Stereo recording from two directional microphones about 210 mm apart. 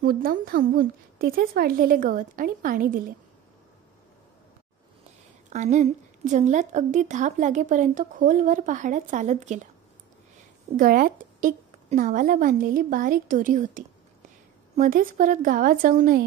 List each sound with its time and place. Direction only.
0.0 s a woman's voice: 45° right (ahead or behind)
5.5 s a woman's voice: 35° right (ahead or behind)
10.8 s a woman's voice: 40° right (ahead or behind)